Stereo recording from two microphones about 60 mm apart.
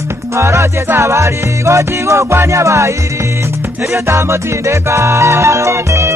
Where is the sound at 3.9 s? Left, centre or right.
Right.